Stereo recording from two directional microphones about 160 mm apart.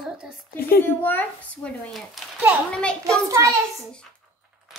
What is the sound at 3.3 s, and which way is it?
Speech, 20° right (ahead or behind).